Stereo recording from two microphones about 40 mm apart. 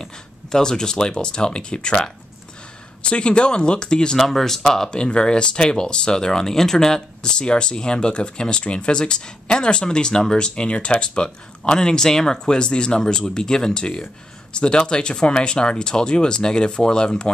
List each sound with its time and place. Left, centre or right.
0.0 s speech: centre
4.2 s speech: centre
4.9 s speech: left